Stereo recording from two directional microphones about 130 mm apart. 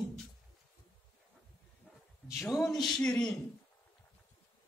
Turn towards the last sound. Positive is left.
turn(degrees=10)  # may be behind; listen again after turning